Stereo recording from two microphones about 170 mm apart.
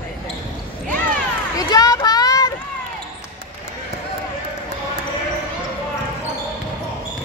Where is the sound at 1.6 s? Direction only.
20° left (ahead or behind).